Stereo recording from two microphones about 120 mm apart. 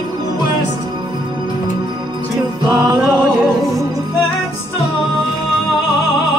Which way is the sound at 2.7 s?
25° right (ahead or behind).